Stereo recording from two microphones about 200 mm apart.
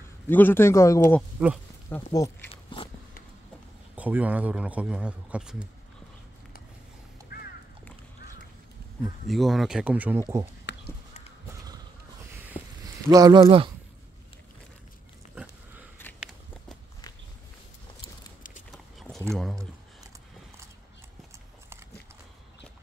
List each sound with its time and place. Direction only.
0.3 s a man's voice: 10° left (ahead or behind)
1.4 s speech: 5° right (ahead or behind)
2.1 s a man's voice: 15° left (ahead or behind)
2.5 s a sound: 25° left (ahead or behind)
3.9 s a man's voice: 5° right (ahead or behind)
7.3 s crow: 50° left (ahead or behind)
9.3 s speech: centre (ahead or behind)
10.7 s a sound: 55° left (ahead or behind)
12.8 s speech: 20° right (ahead or behind)
18.7 s a sound: centre (ahead or behind)